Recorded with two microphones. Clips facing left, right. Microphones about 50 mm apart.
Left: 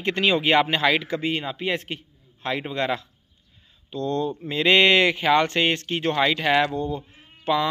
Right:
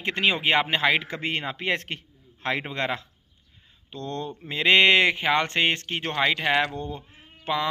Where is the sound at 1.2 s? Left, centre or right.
Right.